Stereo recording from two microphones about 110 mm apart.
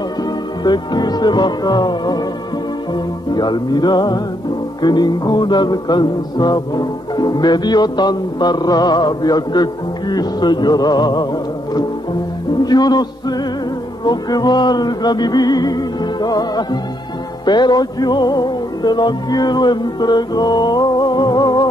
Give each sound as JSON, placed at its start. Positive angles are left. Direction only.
{"t": 0.7, "sound": "music", "side_deg": 40}
{"t": 12.6, "sound": "music", "side_deg": 40}